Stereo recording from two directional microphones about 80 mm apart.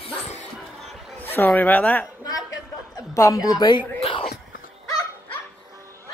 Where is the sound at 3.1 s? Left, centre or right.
Left.